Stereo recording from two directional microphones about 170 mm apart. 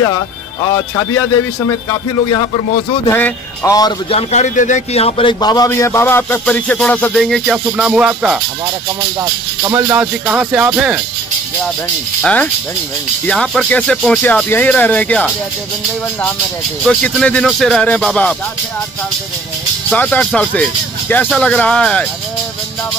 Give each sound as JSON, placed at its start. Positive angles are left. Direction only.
{"t": 2.3, "sound": "a man's voice", "side_deg": 30}
{"t": 3.1, "sound": "speech", "side_deg": 15}
{"t": 4.1, "sound": "speech", "side_deg": 45}
{"t": 9.2, "sound": "speech", "side_deg": -20}
{"t": 12.2, "sound": "speech", "side_deg": 5}
{"t": 16.8, "sound": "speech", "side_deg": 5}
{"t": 19.9, "sound": "speech", "side_deg": 5}